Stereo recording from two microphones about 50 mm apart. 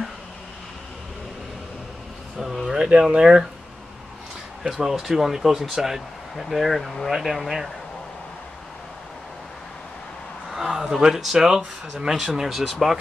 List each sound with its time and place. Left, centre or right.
2.7 s speech: centre
4.6 s speech: centre
10.5 s speech: centre